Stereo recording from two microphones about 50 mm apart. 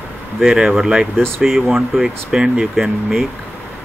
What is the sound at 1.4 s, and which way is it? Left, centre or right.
Speech, centre.